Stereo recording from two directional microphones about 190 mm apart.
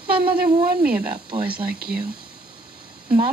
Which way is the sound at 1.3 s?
25° right (ahead or behind).